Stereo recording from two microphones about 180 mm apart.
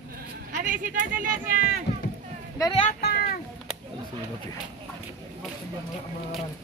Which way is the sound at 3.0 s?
60° left (ahead or behind).